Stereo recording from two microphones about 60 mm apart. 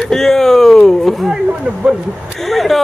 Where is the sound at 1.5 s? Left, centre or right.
Centre.